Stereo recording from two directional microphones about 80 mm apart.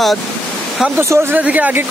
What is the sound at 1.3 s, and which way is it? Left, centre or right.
Speech, centre.